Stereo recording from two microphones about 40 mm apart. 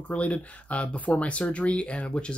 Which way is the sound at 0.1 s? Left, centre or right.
Left.